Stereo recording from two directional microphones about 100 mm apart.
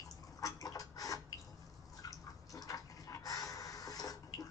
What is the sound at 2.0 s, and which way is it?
Water, 35° left (ahead or behind).